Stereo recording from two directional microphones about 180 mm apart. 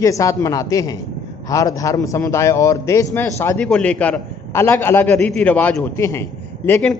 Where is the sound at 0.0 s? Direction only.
15° left (ahead or behind).